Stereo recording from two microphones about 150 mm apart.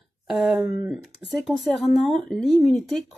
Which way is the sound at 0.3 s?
5° right (ahead or behind).